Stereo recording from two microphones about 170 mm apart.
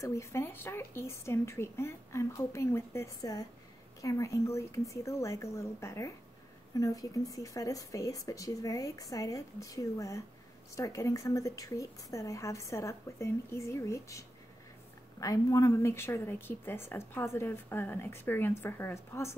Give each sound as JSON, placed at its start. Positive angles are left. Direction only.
{"t": 0.0, "sound": "speech", "side_deg": 15}